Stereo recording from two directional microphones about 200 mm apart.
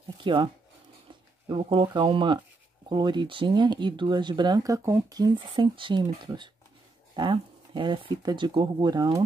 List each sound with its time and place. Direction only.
0.2 s speech: 25° right (ahead or behind)
1.5 s speech: 25° right (ahead or behind)